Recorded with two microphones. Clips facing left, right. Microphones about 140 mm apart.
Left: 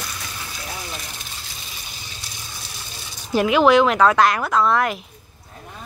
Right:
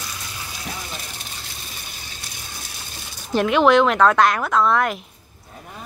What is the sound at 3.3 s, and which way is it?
Speech, 5° left (ahead or behind).